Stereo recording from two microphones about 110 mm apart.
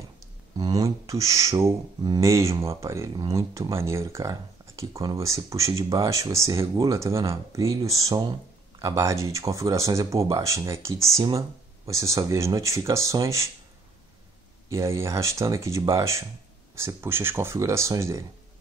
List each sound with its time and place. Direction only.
0.6 s a sound: 35° right (ahead or behind)
2.1 s speech: 25° right (ahead or behind)
14.7 s speech: 25° right (ahead or behind)